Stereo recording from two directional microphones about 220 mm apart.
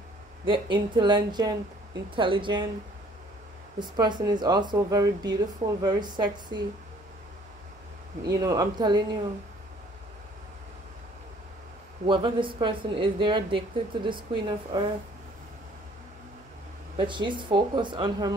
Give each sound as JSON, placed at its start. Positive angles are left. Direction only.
{"t": 0.5, "sound": "speech", "side_deg": -20}
{"t": 3.8, "sound": "speech", "side_deg": -20}
{"t": 8.2, "sound": "speech", "side_deg": -15}
{"t": 12.1, "sound": "speech", "side_deg": -20}
{"t": 16.9, "sound": "speech", "side_deg": -20}